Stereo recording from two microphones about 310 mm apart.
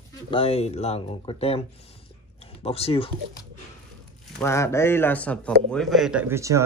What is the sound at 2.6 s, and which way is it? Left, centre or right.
A man's voice, centre.